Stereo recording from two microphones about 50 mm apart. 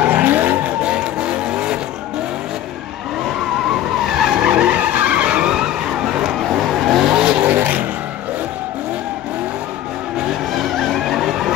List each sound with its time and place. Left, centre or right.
0.0 s vehicle: right
0.8 s vehicle: right
4.4 s vehicle: right
6.5 s vehicle: centre; by 7.8 s right
10.5 s vehicle: centre